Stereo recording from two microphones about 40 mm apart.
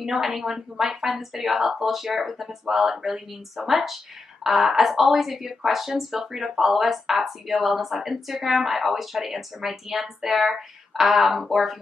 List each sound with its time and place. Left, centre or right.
0.2 s speech: centre